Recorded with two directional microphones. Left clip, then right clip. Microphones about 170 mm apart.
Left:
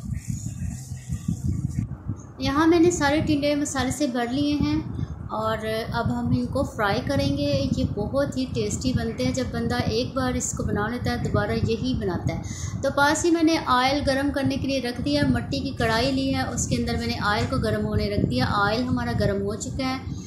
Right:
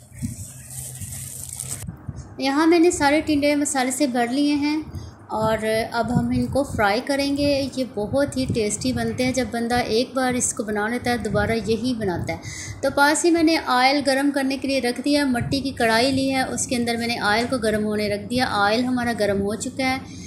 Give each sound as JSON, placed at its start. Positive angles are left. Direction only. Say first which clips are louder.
{"t": 2.4, "sound": "a woman's voice", "louder": "right 2 dB", "side_deg": -15}